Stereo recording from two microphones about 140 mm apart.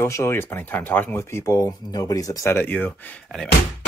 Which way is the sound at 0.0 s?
20° left (ahead or behind).